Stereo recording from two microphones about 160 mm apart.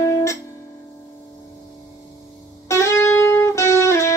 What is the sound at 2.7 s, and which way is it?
Music, 20° left (ahead or behind).